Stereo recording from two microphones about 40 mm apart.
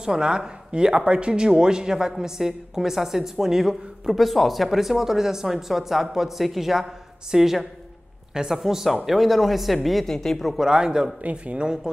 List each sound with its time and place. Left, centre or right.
0.0 s speech: centre
4.1 s speech: centre
10.1 s speech: centre
10.6 s a man's voice: centre
11.2 s speech: right
11.6 s a man's voice: right